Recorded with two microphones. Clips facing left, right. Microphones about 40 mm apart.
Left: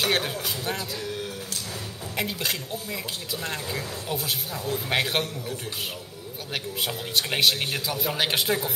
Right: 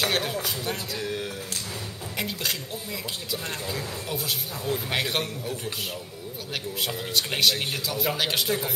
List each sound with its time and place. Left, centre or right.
0.0 s speech: centre
2.1 s a sound: centre
3.4 s speech: centre
6.5 s speech: centre